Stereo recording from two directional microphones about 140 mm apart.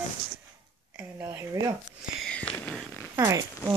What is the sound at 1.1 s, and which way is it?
Speech, 20° right (ahead or behind).